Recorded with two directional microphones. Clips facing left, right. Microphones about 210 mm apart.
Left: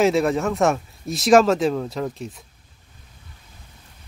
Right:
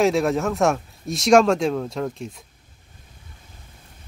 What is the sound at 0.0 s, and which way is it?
Speech, centre (ahead or behind).